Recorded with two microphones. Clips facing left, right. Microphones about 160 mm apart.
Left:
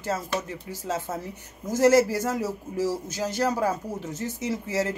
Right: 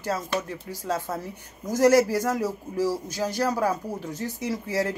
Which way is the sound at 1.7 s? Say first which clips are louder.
Even; 25° left (ahead or behind).